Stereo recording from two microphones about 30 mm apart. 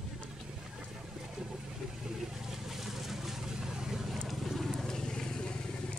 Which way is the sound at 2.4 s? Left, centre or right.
Centre.